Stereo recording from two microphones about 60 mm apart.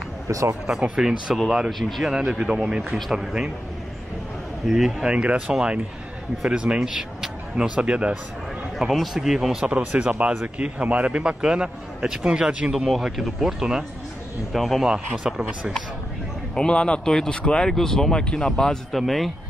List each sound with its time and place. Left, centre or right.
0.3 s speech: right
0.7 s a man's voice: centre
2.1 s a man's voice: centre
4.6 s a man's voice: centre
8.9 s a man's voice: centre
9.7 s a man's voice: right
12.7 s a man's voice: centre
14.5 s a man's voice: centre
16.5 s speech: centre